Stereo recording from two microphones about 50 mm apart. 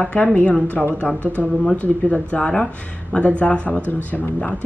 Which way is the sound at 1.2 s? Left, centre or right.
Right.